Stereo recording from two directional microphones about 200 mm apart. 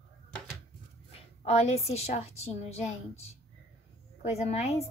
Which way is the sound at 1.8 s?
35° left (ahead or behind).